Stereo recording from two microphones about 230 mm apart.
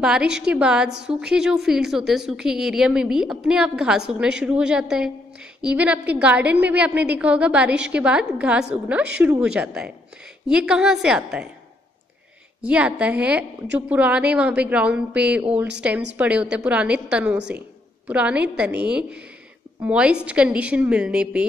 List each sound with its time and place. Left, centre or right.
0.0 s a woman's voice: centre
12.6 s a woman's voice: centre
17.4 s a woman's voice: right
18.0 s a woman's voice: centre